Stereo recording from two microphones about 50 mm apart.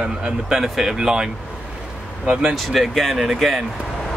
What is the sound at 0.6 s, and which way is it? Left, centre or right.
Speech, centre.